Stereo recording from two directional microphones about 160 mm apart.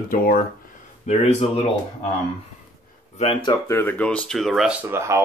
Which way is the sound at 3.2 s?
30° left (ahead or behind).